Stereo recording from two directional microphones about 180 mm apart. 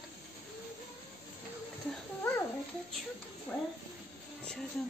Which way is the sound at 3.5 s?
5° left (ahead or behind).